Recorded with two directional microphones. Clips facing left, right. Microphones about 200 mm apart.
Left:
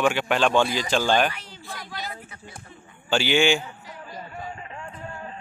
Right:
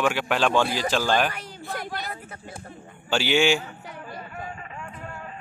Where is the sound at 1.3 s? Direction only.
55° right (ahead or behind).